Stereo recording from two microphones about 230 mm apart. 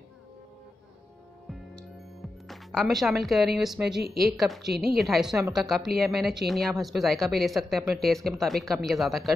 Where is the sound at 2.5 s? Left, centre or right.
Centre.